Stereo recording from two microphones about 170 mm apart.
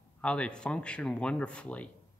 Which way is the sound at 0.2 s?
5° left (ahead or behind).